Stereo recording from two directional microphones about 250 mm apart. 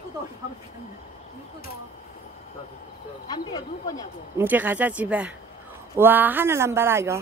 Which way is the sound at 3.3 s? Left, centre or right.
Centre.